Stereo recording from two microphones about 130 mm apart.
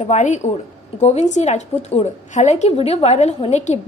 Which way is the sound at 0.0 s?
65° left (ahead or behind).